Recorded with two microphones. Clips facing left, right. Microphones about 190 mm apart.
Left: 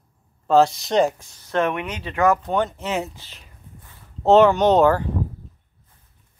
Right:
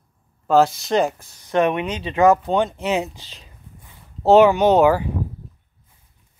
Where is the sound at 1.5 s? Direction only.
20° right (ahead or behind).